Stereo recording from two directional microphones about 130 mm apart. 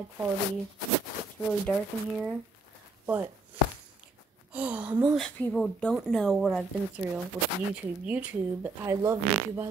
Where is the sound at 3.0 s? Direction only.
15° right (ahead or behind).